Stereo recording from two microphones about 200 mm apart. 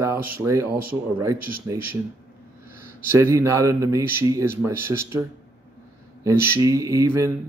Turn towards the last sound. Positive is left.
turn(degrees=-15)  # may be behind; listen again after turning